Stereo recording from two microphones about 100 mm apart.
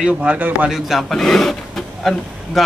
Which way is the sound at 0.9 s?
Centre (ahead or behind).